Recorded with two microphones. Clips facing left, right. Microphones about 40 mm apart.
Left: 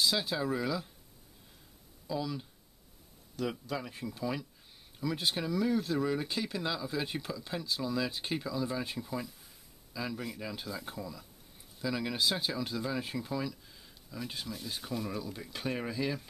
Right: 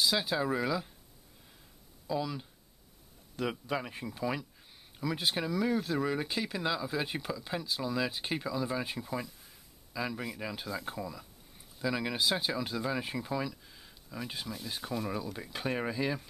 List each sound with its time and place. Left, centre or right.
0.0 s speech: centre
2.0 s speech: centre
3.3 s speech: right